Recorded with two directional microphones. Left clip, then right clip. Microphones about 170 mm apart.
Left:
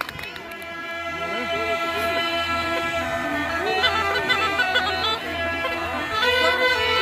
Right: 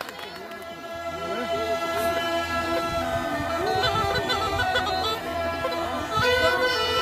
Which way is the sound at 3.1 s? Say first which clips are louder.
Left 2 dB; centre (ahead or behind).